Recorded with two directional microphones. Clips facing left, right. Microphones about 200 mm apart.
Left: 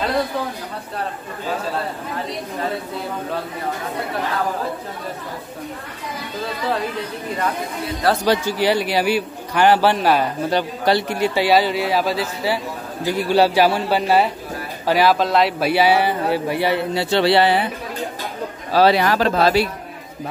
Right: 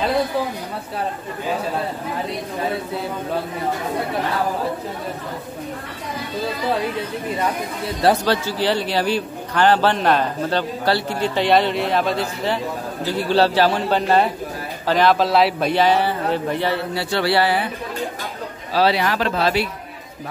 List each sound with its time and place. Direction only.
8.3 s a man's voice: 15° left (ahead or behind); by 15.7 s centre (ahead or behind)
15.7 s a man's voice: 10° left (ahead or behind)
18.7 s a man's voice: 45° left (ahead or behind)